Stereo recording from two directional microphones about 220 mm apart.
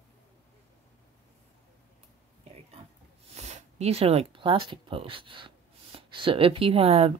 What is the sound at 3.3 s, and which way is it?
Speech, 30° right (ahead or behind).